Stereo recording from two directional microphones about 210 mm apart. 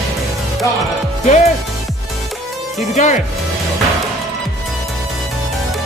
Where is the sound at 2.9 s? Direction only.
35° left (ahead or behind).